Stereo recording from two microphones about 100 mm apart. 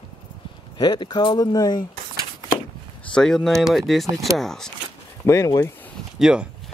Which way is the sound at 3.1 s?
5° left (ahead or behind).